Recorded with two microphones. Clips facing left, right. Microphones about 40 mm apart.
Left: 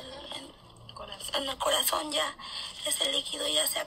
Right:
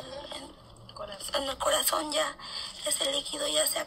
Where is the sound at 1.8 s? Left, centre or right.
Centre.